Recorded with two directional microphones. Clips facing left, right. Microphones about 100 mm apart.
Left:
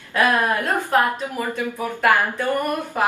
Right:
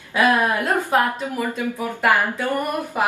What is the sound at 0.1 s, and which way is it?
Speech, 15° right (ahead or behind).